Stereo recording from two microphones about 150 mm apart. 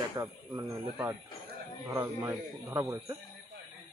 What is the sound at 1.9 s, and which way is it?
Speech, 20° right (ahead or behind).